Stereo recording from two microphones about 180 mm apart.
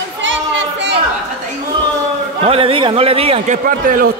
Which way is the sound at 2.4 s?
30° right (ahead or behind).